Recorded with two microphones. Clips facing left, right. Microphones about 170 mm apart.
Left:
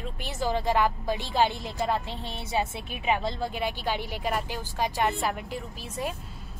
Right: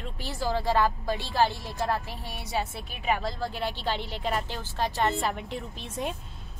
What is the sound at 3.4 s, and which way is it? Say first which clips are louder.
A woman's voice: left 1 dB; 15° left (ahead or behind).